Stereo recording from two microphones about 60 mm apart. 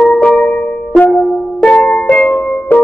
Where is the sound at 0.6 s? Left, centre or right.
Left.